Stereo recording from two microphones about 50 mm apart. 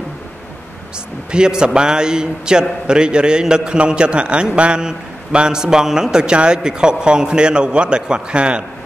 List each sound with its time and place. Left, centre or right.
1.3 s a man's voice: centre